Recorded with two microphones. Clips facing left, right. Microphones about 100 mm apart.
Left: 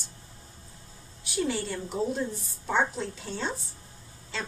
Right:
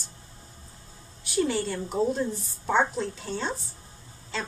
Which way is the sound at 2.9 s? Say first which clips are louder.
Right 4 dB; centre (ahead or behind).